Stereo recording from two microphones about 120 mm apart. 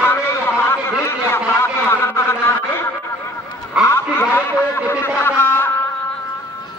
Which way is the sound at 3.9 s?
20° left (ahead or behind).